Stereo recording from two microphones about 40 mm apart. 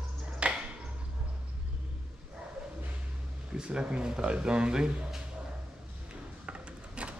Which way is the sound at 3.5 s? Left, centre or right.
Right.